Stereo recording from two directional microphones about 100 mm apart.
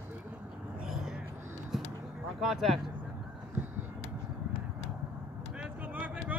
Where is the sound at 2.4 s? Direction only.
Centre (ahead or behind).